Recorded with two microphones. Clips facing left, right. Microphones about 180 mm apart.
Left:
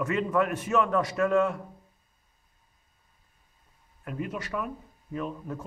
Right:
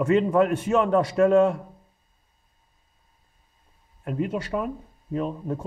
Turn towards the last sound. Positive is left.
turn(degrees=-30)  # may be behind; listen again after turning